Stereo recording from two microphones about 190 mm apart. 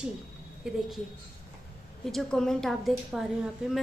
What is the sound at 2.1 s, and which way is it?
A woman's voice, centre (ahead or behind).